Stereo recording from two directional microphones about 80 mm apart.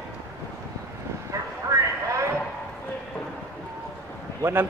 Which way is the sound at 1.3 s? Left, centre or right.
Right.